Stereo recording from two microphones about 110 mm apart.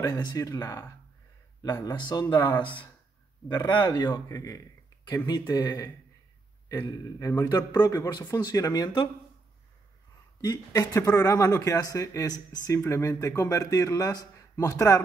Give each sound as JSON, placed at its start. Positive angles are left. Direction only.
{"t": 0.0, "sound": "speech", "side_deg": 30}
{"t": 10.4, "sound": "a man's voice", "side_deg": 35}